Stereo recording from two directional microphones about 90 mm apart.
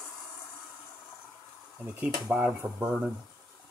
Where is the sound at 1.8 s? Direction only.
15° right (ahead or behind).